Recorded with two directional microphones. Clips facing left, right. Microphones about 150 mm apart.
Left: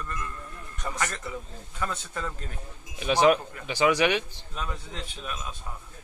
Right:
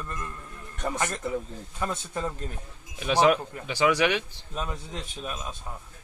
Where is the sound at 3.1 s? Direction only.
Centre (ahead or behind).